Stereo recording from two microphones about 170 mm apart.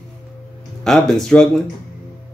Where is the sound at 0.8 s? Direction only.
5° left (ahead or behind).